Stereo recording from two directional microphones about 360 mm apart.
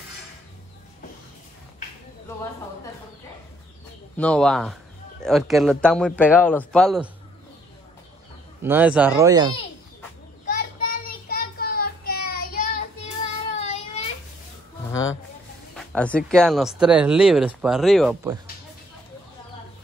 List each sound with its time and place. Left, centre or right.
4.2 s speech: centre
8.6 s speech: centre
10.5 s child singing: left
13.6 s a sound: centre
15.7 s speech: centre